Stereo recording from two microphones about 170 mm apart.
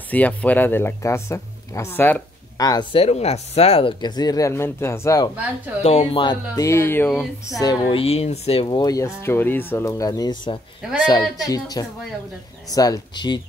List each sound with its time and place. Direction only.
0.1 s speech: 10° left (ahead or behind)
2.6 s speech: 25° left (ahead or behind)
5.8 s speech: 40° left (ahead or behind)
6.2 s speech: 20° left (ahead or behind)
7.6 s speech: 30° left (ahead or behind)